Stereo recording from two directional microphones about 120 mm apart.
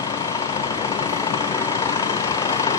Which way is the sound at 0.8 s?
30° left (ahead or behind).